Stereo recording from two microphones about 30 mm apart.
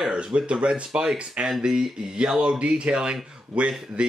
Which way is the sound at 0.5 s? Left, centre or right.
Right.